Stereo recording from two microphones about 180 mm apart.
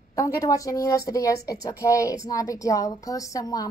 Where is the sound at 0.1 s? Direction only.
20° left (ahead or behind).